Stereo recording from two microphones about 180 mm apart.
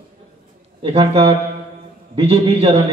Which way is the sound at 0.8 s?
30° right (ahead or behind).